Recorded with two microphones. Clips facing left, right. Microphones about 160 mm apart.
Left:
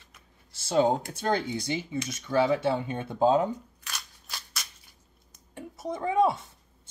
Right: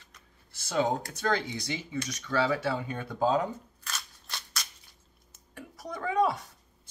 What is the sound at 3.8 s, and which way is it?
Scissors, 5° left (ahead or behind).